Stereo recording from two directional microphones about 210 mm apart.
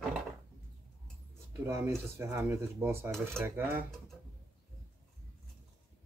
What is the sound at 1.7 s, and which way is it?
Speech, 15° right (ahead or behind).